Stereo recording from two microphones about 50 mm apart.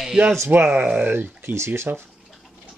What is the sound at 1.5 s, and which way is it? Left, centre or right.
Speech, right.